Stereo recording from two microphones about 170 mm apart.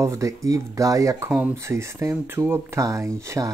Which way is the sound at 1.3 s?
5° right (ahead or behind).